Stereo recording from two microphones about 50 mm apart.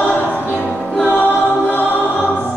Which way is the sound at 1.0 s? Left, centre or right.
Left.